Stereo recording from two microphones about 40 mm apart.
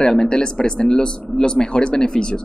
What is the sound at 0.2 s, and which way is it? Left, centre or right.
Speech, centre.